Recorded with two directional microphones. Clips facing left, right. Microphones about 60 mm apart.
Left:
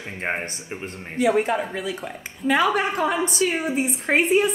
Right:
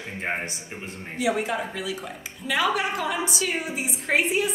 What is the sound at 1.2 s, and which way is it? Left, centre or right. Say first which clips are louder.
A woman's voice: left 5 dB; left.